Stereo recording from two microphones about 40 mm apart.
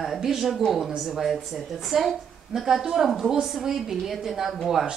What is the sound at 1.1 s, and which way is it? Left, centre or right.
A woman's voice, centre.